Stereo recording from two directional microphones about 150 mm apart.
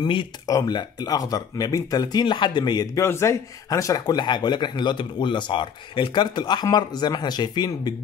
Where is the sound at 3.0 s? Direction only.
20° left (ahead or behind).